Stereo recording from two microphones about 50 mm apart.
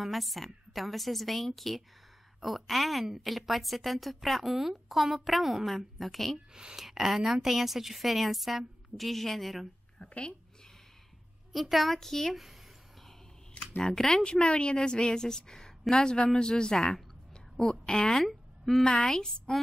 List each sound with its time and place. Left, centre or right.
0.0 s speech: centre
6.5 s speech: centre
9.9 s a woman's voice: centre
11.5 s speech: centre
13.7 s a woman's voice: centre
18.2 s a sound: centre
18.9 s speech: centre